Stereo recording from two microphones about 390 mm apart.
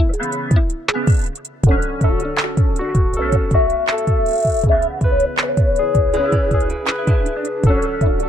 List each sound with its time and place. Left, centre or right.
3.2 s music: centre
6.1 s music: centre